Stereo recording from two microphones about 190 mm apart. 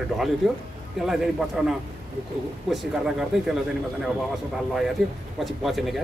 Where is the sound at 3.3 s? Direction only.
Centre (ahead or behind).